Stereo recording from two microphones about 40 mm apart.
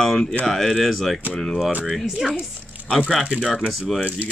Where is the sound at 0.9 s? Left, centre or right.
Centre.